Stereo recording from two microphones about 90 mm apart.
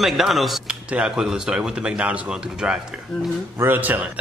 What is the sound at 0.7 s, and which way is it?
Speech, 10° right (ahead or behind).